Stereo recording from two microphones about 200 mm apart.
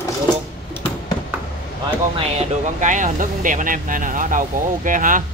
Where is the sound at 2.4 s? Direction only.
40° right (ahead or behind).